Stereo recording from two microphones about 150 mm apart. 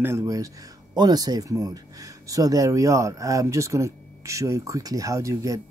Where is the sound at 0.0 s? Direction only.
20° right (ahead or behind).